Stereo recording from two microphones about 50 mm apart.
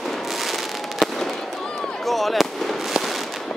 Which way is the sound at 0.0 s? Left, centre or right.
Centre.